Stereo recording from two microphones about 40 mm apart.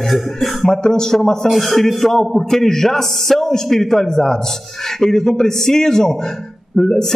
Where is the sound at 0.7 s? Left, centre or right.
Centre.